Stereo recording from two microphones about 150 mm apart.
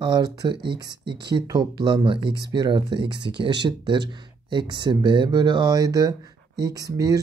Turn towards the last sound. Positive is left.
turn(degrees=-25)  # may be behind; listen again after turning